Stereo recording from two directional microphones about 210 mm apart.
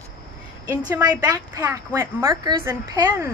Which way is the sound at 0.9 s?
10° right (ahead or behind).